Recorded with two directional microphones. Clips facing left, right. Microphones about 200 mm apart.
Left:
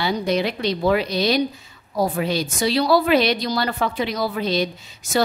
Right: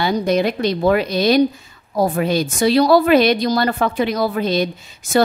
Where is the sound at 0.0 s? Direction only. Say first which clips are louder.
Right 4 dB; 45° right (ahead or behind).